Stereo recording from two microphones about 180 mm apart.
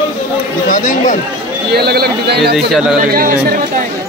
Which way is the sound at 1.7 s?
60° right (ahead or behind).